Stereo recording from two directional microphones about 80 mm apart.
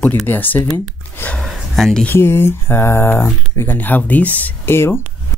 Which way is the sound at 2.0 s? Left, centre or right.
Left.